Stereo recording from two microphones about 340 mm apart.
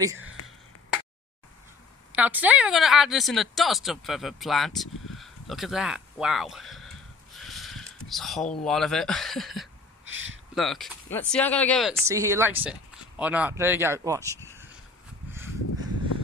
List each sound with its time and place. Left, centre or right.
0.0 s speech: centre
2.1 s a woman's voice: centre
7.3 s a sound: centre
8.6 s a woman's voice: centre
10.0 s a sound: right
10.5 s a woman's voice: centre